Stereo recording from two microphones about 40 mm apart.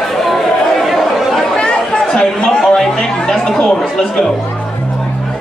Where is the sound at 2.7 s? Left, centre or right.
Centre.